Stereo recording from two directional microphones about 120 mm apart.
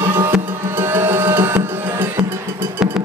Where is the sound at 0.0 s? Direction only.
15° right (ahead or behind).